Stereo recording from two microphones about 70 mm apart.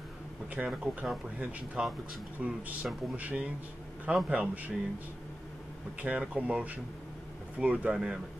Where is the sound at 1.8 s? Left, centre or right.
Centre.